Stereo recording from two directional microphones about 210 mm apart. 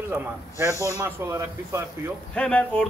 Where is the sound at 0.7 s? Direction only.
15° left (ahead or behind).